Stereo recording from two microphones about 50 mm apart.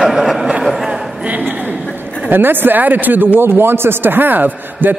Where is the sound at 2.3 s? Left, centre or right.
Right.